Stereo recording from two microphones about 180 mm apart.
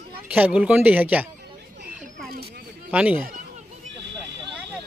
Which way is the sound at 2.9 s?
10° right (ahead or behind).